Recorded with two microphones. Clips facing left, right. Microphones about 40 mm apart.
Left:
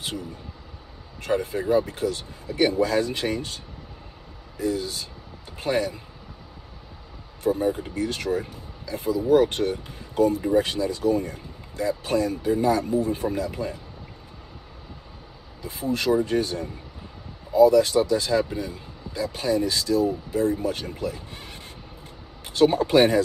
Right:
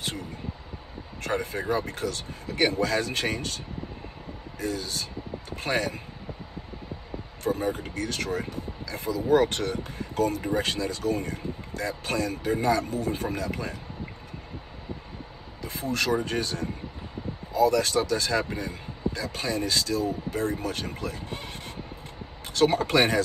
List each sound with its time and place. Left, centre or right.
0.0 s a sound: right
1.2 s speech: right
7.4 s speech: right
15.6 s speech: right
22.5 s speech: right